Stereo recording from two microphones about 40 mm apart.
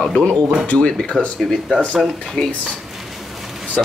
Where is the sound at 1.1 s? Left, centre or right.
Right.